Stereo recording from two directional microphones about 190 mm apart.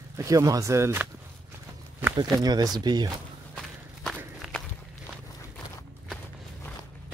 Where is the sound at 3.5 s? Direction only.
5° left (ahead or behind).